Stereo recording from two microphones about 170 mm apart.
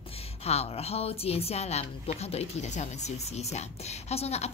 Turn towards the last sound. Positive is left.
turn(degrees=40)  # may be behind; listen again after turning